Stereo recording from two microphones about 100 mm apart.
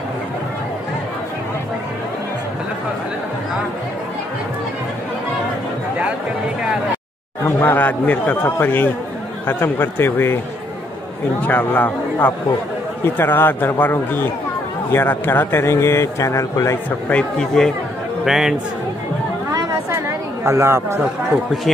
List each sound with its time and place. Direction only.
7.6 s a man's voice: 15° left (ahead or behind)
11.4 s a man's voice: 20° left (ahead or behind)
17.1 s a man's voice: 10° left (ahead or behind)
18.2 s a man's voice: 5° right (ahead or behind)
20.4 s speech: 25° right (ahead or behind)